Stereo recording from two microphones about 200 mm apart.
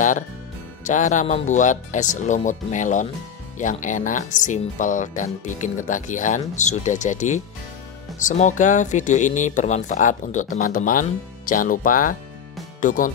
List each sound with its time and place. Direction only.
0.8 s speech: 40° left (ahead or behind)